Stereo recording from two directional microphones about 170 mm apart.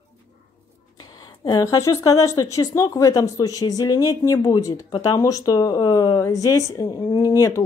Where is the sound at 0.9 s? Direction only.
25° left (ahead or behind).